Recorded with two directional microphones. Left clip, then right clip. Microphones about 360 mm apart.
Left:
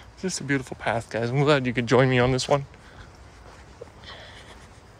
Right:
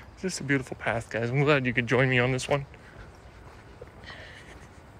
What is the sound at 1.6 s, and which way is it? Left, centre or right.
Speech, left.